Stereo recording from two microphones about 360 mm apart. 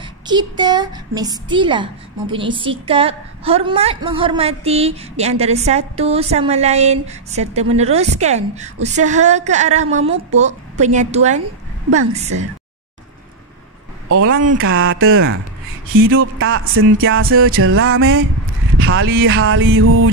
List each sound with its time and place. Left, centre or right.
0.0 s a woman's voice: centre
14.0 s speech: right
14.6 s music: right